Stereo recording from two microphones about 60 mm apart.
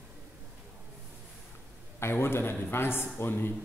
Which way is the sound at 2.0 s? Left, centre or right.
Left.